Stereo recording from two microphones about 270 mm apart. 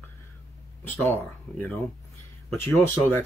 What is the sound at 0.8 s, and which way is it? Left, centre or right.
Speech, centre.